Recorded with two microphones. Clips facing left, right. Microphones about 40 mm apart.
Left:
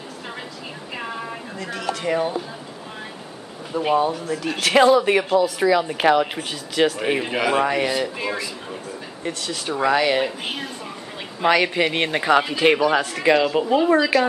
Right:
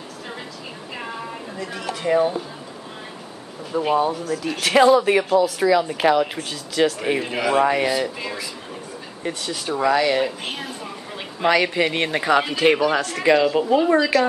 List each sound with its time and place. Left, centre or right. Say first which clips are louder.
1.7 s speech: right 2 dB; centre
3.8 s speech: left 1 dB; centre
7.6 s speech: right 2 dB; centre
8.2 s speech: left 3 dB; centre
9.3 s speech: even; centre
9.7 s speech: even; centre
10.5 s a woman's voice: even; centre